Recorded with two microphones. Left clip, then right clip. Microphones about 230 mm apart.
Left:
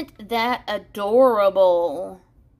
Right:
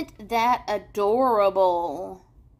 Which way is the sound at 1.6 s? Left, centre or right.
Left.